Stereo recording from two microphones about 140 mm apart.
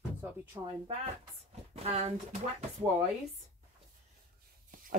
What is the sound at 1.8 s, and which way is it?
Speech, 50° right (ahead or behind).